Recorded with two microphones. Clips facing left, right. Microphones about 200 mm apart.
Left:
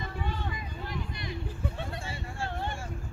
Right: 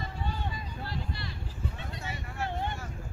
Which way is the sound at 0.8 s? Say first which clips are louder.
Left 1 dB; 20° left (ahead or behind).